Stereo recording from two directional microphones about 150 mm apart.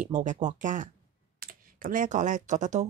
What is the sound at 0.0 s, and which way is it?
Speech, 55° right (ahead or behind).